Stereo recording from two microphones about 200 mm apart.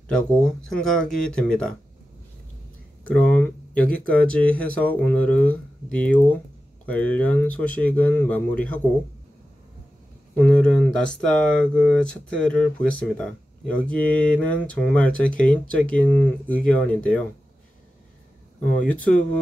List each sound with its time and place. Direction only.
0.4 s speech: 5° left (ahead or behind)
3.1 s speech: 10° left (ahead or behind)
10.3 s speech: 5° left (ahead or behind)
18.9 s speech: 5° left (ahead or behind)